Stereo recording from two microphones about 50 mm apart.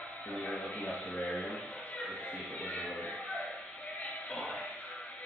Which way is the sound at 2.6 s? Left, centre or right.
Left.